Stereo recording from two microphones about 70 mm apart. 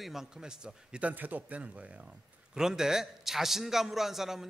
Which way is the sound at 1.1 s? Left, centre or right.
Right.